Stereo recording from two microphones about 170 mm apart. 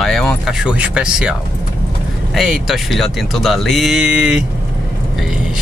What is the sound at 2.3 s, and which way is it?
Speech, centre (ahead or behind).